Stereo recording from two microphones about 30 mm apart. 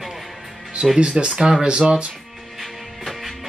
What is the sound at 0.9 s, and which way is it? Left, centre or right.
Speech, right.